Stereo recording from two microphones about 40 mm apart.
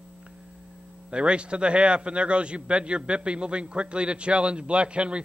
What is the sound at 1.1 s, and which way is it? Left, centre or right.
A man's voice, right.